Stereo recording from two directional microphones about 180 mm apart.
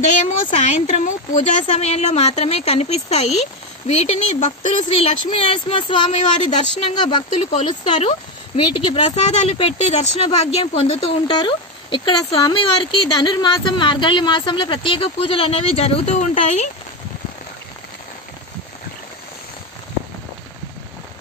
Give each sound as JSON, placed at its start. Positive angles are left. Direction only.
{"t": 0.3, "sound": "speech", "side_deg": 40}